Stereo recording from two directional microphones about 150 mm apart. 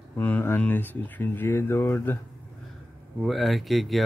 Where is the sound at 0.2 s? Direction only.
15° left (ahead or behind).